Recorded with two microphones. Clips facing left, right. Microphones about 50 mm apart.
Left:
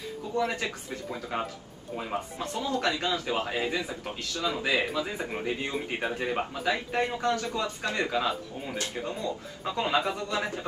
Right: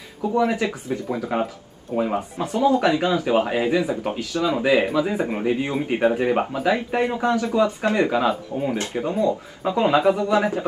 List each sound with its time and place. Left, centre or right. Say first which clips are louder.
0.3 s speech: right 8 dB; centre
7.4 s speech: right 11 dB; right; by 10.3 s centre
10.3 s speech: right 11 dB; right